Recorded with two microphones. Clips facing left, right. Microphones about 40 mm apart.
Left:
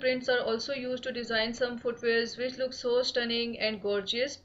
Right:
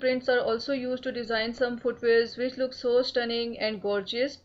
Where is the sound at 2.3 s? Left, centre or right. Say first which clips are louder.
Right 3 dB; centre.